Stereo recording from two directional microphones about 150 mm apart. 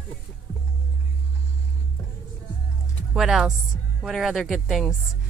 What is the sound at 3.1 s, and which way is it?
Speech, 5° right (ahead or behind).